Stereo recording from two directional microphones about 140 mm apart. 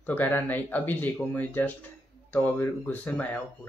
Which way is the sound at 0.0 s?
15° left (ahead or behind).